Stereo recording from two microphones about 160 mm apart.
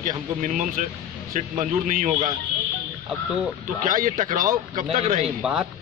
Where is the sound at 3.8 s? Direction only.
55° right (ahead or behind).